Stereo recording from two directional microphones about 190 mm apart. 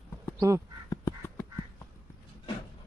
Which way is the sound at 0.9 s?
20° left (ahead or behind).